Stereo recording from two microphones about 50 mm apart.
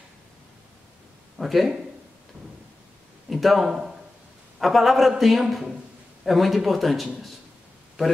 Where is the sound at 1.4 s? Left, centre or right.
Centre.